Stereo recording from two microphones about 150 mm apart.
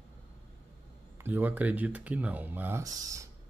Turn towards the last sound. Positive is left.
turn(degrees=-25)  # may be behind; listen again after turning